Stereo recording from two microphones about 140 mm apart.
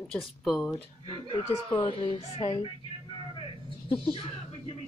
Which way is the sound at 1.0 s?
40° left (ahead or behind).